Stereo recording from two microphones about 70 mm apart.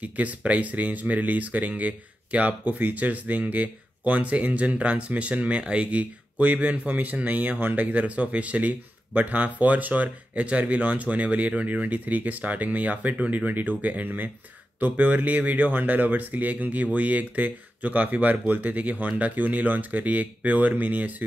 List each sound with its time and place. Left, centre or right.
0.0 s speech: right